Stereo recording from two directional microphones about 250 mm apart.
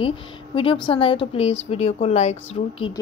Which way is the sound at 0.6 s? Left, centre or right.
Centre.